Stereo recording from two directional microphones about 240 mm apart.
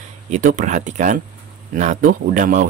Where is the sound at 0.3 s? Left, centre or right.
Right.